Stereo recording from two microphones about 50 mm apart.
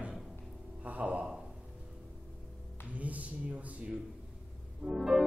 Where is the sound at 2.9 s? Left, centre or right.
Right.